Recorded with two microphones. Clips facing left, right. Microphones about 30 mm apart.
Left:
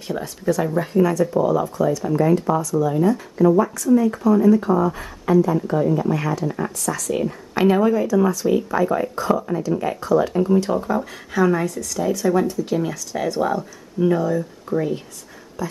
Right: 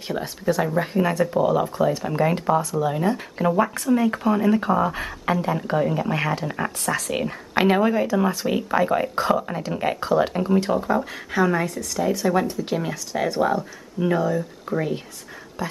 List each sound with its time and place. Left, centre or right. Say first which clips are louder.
0.2 s speech: left 1 dB; right
3.3 s speech: left 5 dB; right
7.5 s speech: left 2 dB; right
10.7 s speech: even; centre; by 12.7 s right
12.7 s speech: left 2 dB; centre
15.6 s speech: left 1 dB; right